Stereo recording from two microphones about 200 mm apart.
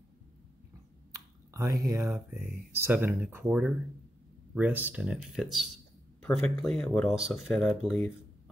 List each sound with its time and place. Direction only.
1.5 s speech: 15° right (ahead or behind)
2.0 s speech: 5° right (ahead or behind)